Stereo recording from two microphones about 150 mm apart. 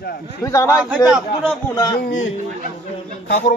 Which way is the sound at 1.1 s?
5° right (ahead or behind).